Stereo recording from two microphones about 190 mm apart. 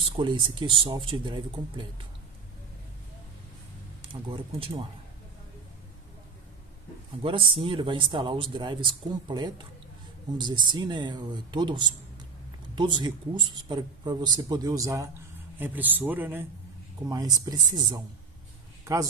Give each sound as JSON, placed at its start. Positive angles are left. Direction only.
{"t": 0.2, "sound": "speech", "side_deg": -25}
{"t": 4.1, "sound": "speech", "side_deg": -25}
{"t": 7.2, "sound": "a man's voice", "side_deg": -30}